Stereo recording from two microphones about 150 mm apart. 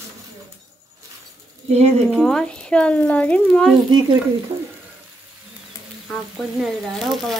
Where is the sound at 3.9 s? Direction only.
30° right (ahead or behind).